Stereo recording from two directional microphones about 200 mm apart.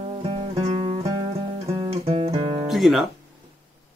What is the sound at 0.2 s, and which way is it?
Music, 30° right (ahead or behind).